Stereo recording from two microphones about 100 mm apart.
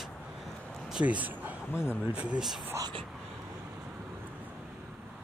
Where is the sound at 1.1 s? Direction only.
15° right (ahead or behind).